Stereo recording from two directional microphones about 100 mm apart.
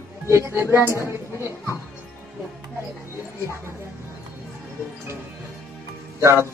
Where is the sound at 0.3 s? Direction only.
25° right (ahead or behind).